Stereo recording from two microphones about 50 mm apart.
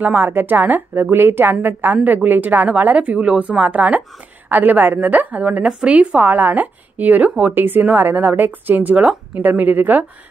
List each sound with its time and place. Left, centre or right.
0.0 s a woman's voice: right
0.3 s a woman's voice: right
7.5 s a woman's voice: right